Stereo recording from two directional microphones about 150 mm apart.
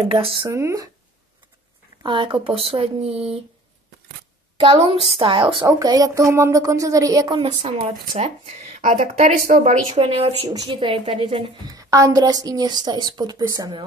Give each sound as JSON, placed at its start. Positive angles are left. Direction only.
{"t": 0.1, "sound": "speech", "side_deg": -35}
{"t": 0.5, "sound": "a woman's voice", "side_deg": -20}
{"t": 2.0, "sound": "speech", "side_deg": -35}
{"t": 4.6, "sound": "speech", "side_deg": -35}
{"t": 5.7, "sound": "a woman's voice", "side_deg": -25}
{"t": 8.1, "sound": "a woman's voice", "side_deg": -45}